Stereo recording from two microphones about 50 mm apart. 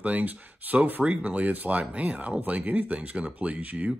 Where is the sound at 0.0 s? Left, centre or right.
Right.